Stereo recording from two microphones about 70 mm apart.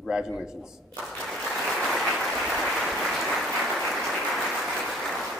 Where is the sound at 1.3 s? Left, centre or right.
Centre.